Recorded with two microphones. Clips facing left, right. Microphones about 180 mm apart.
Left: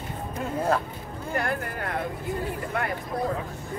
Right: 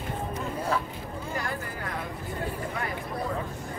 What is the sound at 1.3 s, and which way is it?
Speech, 60° left (ahead or behind).